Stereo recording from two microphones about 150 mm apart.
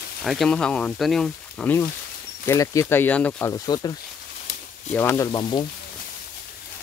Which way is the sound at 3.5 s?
25° left (ahead or behind).